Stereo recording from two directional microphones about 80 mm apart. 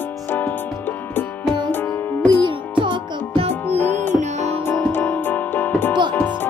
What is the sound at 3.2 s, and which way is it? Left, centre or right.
Music, left.